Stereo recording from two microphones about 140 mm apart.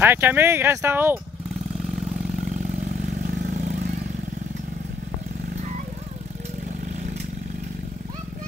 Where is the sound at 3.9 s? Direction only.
75° right (ahead or behind).